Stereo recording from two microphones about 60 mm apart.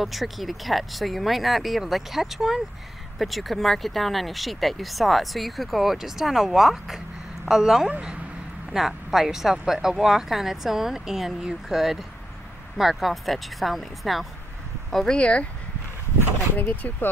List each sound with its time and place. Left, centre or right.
0.0 s speech: centre
15.1 s speech: centre
16.5 s speech: left